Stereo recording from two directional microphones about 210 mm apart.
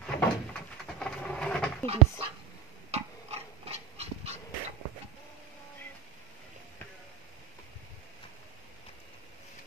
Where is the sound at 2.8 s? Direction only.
30° right (ahead or behind).